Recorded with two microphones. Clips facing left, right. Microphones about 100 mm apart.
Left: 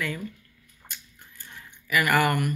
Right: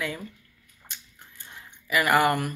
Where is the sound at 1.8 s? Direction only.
25° right (ahead or behind).